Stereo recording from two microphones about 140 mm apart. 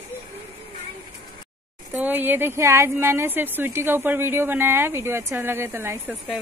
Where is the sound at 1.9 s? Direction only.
15° right (ahead or behind).